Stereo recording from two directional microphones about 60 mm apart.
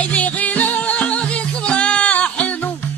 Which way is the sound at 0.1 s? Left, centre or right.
Left.